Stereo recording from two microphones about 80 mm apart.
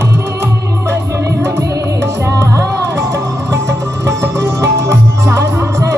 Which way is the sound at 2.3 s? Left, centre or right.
Right.